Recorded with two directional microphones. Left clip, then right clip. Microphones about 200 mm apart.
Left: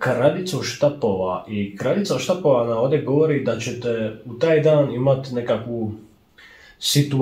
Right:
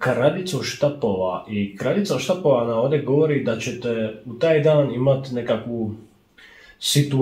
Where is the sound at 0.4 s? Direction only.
20° left (ahead or behind).